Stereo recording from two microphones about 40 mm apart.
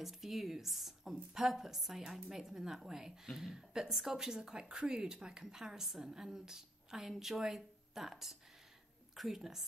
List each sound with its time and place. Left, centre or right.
0.0 s a woman's voice: centre